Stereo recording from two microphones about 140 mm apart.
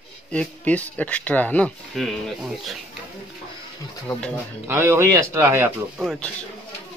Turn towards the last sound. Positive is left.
turn(degrees=5)  # may be behind; listen again after turning